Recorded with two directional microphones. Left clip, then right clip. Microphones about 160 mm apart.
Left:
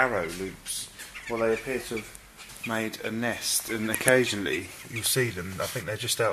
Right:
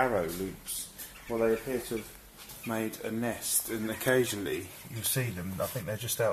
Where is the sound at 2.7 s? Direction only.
20° left (ahead or behind).